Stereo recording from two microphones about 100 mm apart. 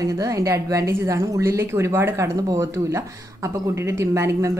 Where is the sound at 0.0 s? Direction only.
35° right (ahead or behind).